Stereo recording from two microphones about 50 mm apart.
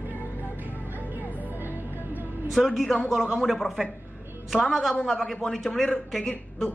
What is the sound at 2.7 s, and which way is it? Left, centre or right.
A man's voice, centre.